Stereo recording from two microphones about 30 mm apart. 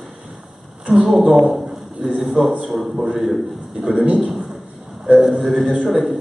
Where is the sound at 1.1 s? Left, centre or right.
Centre.